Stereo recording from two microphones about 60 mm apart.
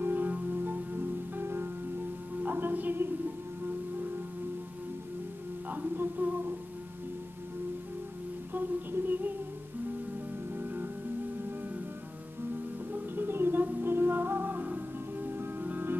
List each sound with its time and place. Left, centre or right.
0.0 s music: right
5.7 s music: right
8.5 s music: right
10.5 s music: right
12.9 s music: right